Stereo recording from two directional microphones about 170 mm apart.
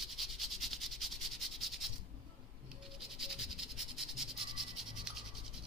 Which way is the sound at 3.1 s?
Centre (ahead or behind).